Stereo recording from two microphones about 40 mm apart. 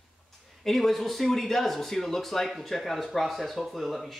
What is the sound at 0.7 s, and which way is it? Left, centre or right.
Speech, centre.